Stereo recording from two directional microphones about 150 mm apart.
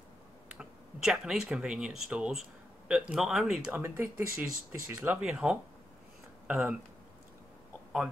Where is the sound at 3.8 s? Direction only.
15° right (ahead or behind).